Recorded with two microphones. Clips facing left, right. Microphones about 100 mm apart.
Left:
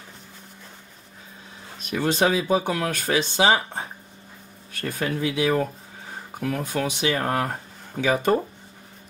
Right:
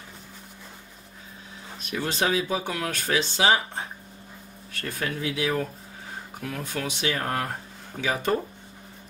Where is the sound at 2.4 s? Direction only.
35° left (ahead or behind).